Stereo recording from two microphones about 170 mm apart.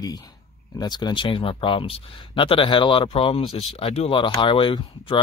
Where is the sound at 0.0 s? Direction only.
20° left (ahead or behind).